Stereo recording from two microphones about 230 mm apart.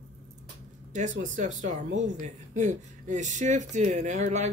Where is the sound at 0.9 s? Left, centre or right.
Right.